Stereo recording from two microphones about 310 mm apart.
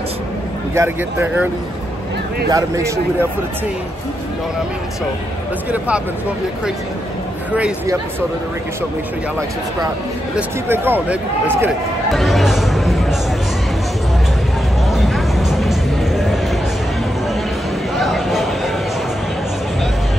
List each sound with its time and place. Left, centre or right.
0.7 s speech: centre
2.5 s speech: centre
10.3 s speech: centre
14.9 s music: centre
17.9 s a sound: centre